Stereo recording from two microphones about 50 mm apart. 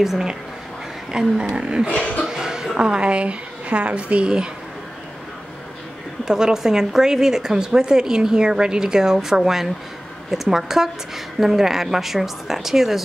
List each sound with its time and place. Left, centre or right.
0.0 s speech: centre
1.9 s a sound: left
2.2 s a woman's voice: centre
6.2 s a woman's voice: centre